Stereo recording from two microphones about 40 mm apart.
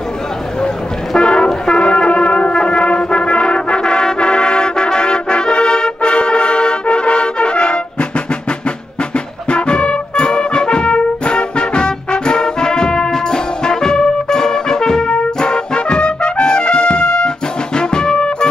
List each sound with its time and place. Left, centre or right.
1.1 s music: centre
9.1 s music: left
17.7 s brass instrument: centre